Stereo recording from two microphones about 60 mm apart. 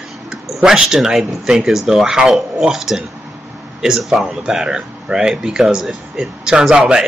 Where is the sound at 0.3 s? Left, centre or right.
Centre.